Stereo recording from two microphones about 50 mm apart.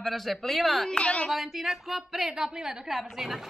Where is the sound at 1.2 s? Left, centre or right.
Centre.